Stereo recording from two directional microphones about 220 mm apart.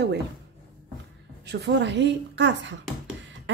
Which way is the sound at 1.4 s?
50° right (ahead or behind).